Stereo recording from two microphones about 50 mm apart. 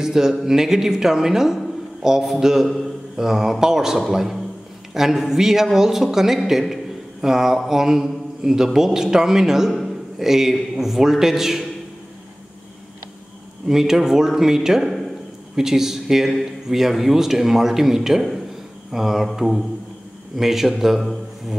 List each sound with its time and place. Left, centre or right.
0.0 s a man's voice: centre
9.7 s a man's voice: centre
13.7 s a man's voice: centre